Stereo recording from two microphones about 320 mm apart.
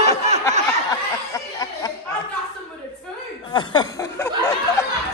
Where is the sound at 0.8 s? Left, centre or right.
Centre.